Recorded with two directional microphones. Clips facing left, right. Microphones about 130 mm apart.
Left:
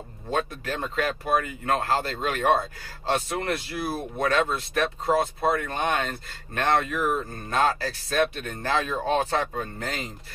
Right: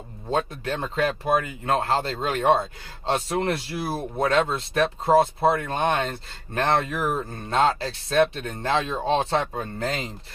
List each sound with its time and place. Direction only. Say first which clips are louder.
0.3 s speech: right 2 dB; 25° right (ahead or behind)